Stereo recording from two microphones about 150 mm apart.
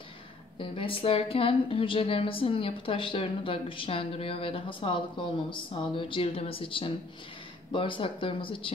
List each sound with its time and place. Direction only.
0.6 s a woman's voice: 35° left (ahead or behind)